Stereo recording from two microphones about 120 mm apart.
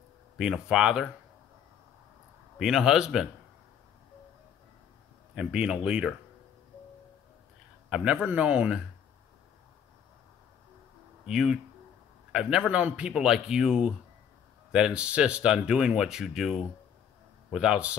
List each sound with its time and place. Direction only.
0.4 s speech: 5° right (ahead or behind)
2.6 s speech: 5° right (ahead or behind)
5.3 s speech: 5° right (ahead or behind)
7.9 s speech: 10° right (ahead or behind)
11.2 s a man's voice: 5° right (ahead or behind)